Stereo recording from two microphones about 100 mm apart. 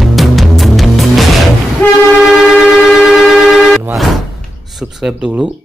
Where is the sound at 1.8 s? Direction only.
20° left (ahead or behind).